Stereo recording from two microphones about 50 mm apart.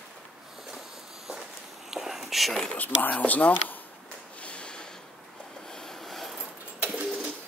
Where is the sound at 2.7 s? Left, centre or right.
Left.